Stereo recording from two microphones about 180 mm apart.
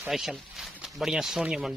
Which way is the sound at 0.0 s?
5° right (ahead or behind).